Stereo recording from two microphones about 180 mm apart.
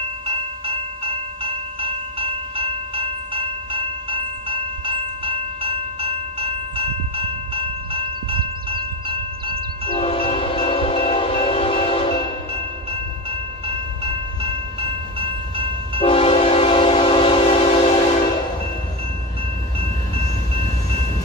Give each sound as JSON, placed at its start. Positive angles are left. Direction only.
{"t": 0.3, "sound": "train", "side_deg": -30}
{"t": 9.9, "sound": "train", "side_deg": 30}
{"t": 12.5, "sound": "train", "side_deg": -30}
{"t": 16.0, "sound": "train", "side_deg": 30}